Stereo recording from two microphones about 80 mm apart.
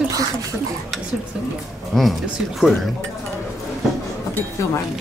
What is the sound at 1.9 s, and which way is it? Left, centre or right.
Speech, centre.